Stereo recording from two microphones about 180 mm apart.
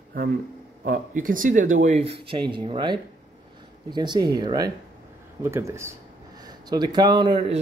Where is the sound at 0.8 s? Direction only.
50° right (ahead or behind).